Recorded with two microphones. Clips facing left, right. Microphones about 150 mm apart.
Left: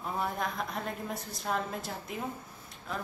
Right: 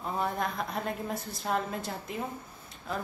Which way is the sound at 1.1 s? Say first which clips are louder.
Right 1 dB; centre (ahead or behind).